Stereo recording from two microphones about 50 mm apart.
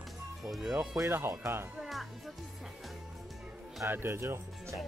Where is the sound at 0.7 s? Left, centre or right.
Right.